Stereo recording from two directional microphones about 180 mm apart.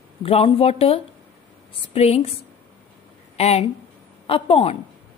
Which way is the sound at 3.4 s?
35° left (ahead or behind).